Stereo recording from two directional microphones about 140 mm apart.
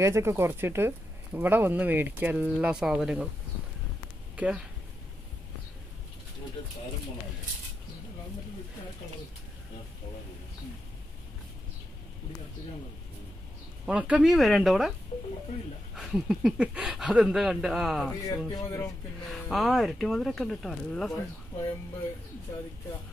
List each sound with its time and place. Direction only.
0.0 s speech: 20° right (ahead or behind)
4.4 s speech: 10° right (ahead or behind)
13.8 s speech: 10° right (ahead or behind)
15.1 s a sound: 45° left (ahead or behind)
15.9 s speech: 5° right (ahead or behind)
18.5 s speech: 25° left (ahead or behind)
19.2 s speech: centre (ahead or behind)